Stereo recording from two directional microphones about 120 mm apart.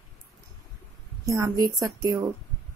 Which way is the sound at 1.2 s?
25° right (ahead or behind).